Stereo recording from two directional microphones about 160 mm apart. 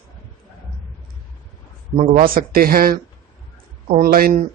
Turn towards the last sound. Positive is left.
turn(degrees=-65)  # may be behind; listen again after turning